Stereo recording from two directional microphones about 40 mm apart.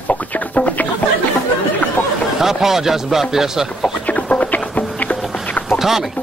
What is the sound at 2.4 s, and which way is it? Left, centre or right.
Speech, centre.